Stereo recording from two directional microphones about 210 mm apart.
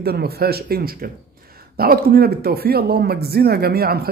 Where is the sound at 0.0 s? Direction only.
50° right (ahead or behind).